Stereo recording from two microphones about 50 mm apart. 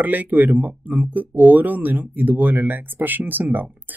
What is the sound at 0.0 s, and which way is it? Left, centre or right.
Speech, right.